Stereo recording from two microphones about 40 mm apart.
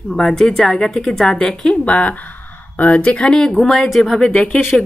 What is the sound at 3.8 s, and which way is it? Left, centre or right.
Speech, centre.